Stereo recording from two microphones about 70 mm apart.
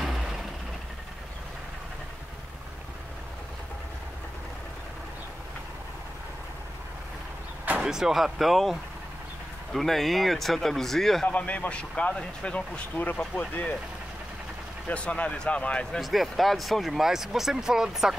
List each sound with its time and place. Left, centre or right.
0.0 s vehicle: centre
7.8 s speech: centre
11.2 s a man's voice: left
14.9 s speech: centre
16.0 s speech: centre